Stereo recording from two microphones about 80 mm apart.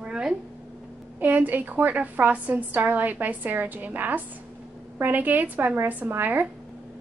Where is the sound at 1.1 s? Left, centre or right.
Right.